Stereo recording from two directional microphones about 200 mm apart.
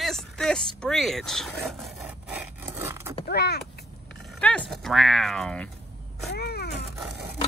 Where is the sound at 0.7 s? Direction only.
Centre (ahead or behind).